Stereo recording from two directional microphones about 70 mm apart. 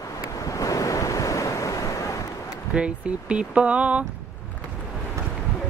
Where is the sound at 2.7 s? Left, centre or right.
Centre.